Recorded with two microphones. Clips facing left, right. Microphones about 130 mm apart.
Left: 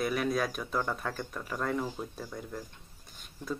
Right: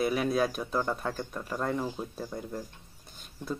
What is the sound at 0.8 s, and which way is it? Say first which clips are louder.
Speech: right 2 dB; 20° right (ahead or behind).